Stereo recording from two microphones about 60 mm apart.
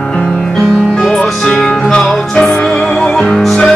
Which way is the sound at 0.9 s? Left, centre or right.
Centre.